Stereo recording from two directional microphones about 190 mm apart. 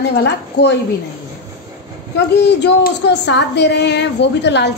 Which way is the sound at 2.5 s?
65° left (ahead or behind).